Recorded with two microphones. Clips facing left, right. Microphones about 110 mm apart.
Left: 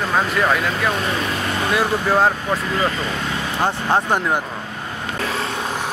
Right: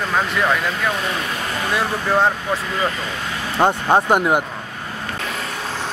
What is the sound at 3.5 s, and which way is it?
Speech, 20° right (ahead or behind).